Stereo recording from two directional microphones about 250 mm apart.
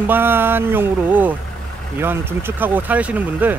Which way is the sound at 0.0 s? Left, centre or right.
Centre.